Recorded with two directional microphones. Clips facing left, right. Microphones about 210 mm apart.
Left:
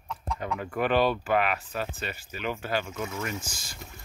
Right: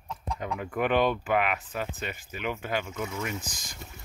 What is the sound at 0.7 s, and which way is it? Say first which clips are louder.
Speech: even; 20° right (ahead or behind).